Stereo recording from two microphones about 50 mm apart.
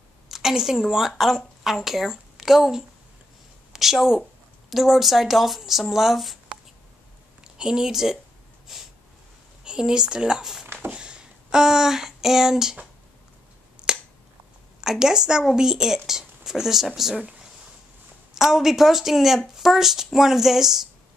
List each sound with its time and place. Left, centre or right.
0.3 s a woman's voice: centre
7.4 s a woman's voice: centre
10.9 s a sound: centre
13.8 s finger snapping: centre
14.8 s speech: centre
18.3 s speech: centre